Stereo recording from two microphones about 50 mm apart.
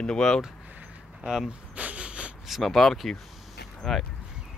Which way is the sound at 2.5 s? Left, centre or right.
Centre.